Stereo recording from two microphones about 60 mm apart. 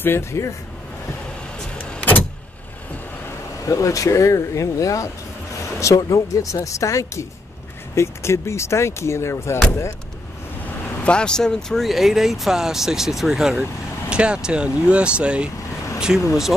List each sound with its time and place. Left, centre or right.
0.0 s speech: left
1.8 s vehicle: centre
3.6 s speech: left
7.9 s speech: left
11.1 s speech: centre